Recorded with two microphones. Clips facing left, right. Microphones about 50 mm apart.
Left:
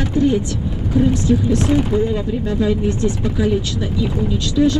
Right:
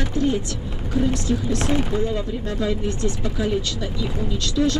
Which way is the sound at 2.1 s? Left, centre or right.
Centre.